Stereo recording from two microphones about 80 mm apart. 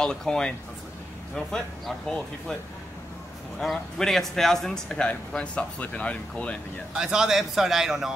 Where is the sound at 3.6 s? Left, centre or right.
Centre.